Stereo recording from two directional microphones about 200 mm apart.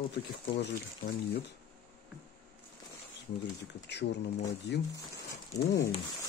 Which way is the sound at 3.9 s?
60° left (ahead or behind).